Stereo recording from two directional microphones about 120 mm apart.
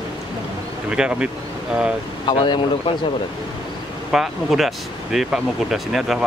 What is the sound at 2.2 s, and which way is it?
Speech, 40° left (ahead or behind).